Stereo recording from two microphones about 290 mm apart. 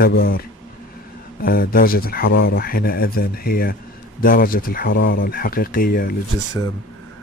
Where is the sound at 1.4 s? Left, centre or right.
Left.